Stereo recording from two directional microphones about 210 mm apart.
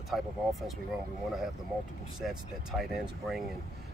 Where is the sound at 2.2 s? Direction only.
Centre (ahead or behind).